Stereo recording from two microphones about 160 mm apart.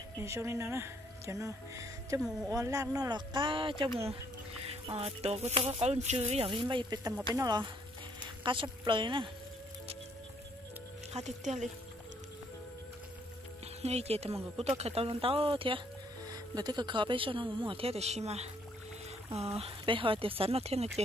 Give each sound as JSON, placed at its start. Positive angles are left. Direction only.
{"t": 0.2, "sound": "speech", "side_deg": -15}
{"t": 4.9, "sound": "speech", "side_deg": -40}
{"t": 11.1, "sound": "speech", "side_deg": -45}
{"t": 13.8, "sound": "speech", "side_deg": -40}